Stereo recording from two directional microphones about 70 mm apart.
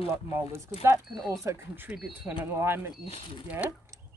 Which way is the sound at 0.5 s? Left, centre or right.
Right.